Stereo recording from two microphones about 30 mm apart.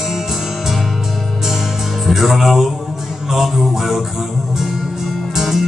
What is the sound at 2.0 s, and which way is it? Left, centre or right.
Music, centre.